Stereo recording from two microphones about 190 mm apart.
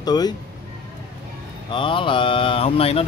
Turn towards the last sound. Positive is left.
turn(degrees=30)  # may be behind; listen again after turning